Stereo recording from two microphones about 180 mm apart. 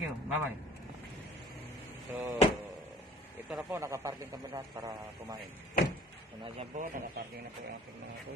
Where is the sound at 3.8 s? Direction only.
15° right (ahead or behind).